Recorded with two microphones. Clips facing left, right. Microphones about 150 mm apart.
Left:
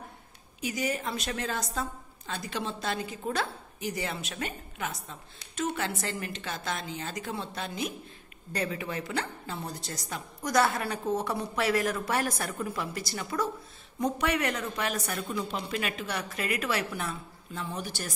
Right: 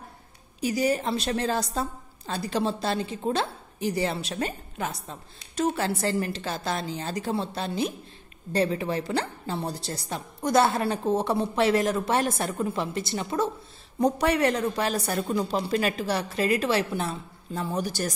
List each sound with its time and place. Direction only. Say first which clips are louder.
0.6 s a woman's voice: right 7 dB; 35° right (ahead or behind)